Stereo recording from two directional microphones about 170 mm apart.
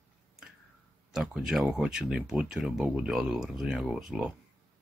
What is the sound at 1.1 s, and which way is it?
Speech, 5° right (ahead or behind).